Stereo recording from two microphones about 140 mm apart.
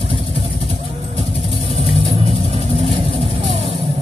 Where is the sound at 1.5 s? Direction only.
45° right (ahead or behind).